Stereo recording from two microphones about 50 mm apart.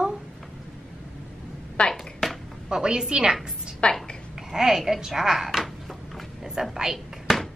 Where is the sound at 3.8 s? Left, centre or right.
Left.